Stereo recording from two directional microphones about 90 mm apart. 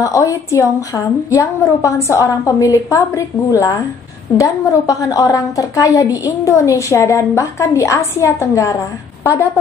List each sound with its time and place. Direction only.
0.0 s a woman's voice: 35° left (ahead or behind)